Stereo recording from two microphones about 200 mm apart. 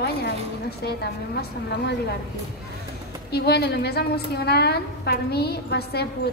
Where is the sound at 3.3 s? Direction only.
55° left (ahead or behind).